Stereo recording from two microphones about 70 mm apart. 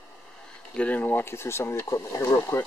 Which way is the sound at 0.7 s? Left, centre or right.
Left.